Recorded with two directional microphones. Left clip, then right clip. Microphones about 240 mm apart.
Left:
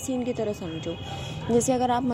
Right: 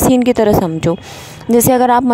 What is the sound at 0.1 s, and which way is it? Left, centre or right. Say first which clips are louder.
Speech: right 12 dB; right.